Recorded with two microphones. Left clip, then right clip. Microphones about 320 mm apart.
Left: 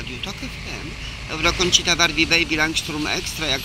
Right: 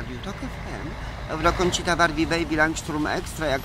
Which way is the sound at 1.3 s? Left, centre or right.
Centre.